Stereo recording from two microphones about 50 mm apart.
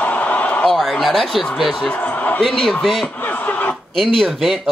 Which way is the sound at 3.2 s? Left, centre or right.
Left.